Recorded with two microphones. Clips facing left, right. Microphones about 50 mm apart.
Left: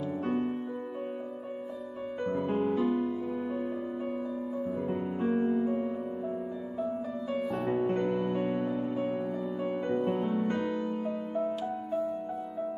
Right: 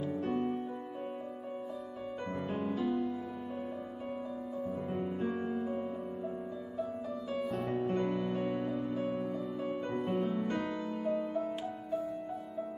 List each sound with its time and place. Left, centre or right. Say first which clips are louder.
0.2 s music: left 4 dB; left
2.3 s music: left 7 dB; left
4.6 s music: left 2 dB; left
7.6 s music: left 5 dB; left